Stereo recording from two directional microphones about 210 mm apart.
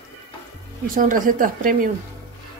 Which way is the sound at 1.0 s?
40° right (ahead or behind).